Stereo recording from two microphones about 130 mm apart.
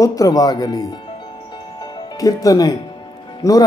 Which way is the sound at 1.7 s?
30° left (ahead or behind).